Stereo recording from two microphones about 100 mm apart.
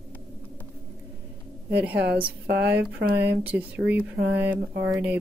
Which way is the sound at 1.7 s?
15° right (ahead or behind).